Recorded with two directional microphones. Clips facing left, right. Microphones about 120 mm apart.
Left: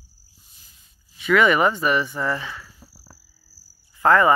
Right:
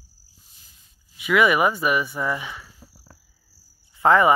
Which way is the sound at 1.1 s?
10° right (ahead or behind).